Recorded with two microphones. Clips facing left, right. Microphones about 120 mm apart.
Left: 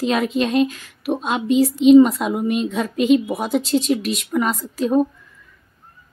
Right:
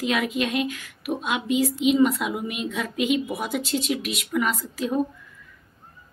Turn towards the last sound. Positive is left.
turn(degrees=40)  # may be behind; listen again after turning